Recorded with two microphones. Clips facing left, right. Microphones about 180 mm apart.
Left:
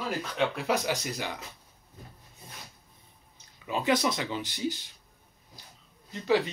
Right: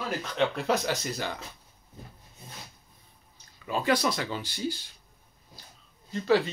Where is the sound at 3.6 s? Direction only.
20° left (ahead or behind).